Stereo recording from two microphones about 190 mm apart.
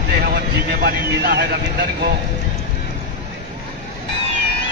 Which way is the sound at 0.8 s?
55° right (ahead or behind).